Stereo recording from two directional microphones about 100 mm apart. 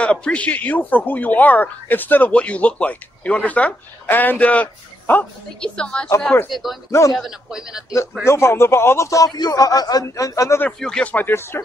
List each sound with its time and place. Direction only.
0.0 s speech: 10° left (ahead or behind)
6.9 s a man's voice: 30° left (ahead or behind)
7.2 s a man's voice: 5° right (ahead or behind)
8.3 s a man's voice: 25° left (ahead or behind)
10.8 s speech: 10° left (ahead or behind)